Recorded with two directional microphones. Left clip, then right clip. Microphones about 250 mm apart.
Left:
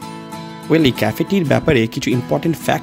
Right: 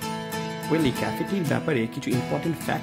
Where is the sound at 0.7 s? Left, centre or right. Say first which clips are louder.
Left 10 dB; left.